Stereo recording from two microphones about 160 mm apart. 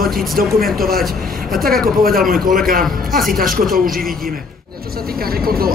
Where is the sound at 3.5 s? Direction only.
Centre (ahead or behind).